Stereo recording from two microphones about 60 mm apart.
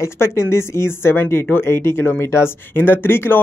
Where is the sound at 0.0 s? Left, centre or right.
Left.